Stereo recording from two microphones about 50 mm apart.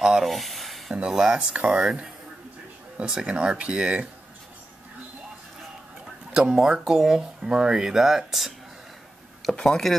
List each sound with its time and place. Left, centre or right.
0.0 s speech: centre
0.3 s a sound: centre
1.1 s speech: centre
1.4 s speech: right
3.1 s speech: centre
6.3 s speech: centre
9.5 s speech: centre